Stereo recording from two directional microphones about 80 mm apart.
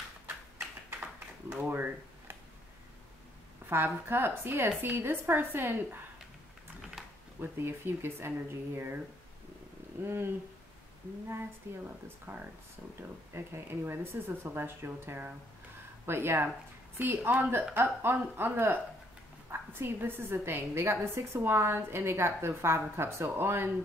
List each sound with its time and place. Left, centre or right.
1.5 s a sound: right
3.6 s a woman's voice: right
7.3 s a woman's voice: right
10.0 s a woman's voice: right
11.6 s a woman's voice: right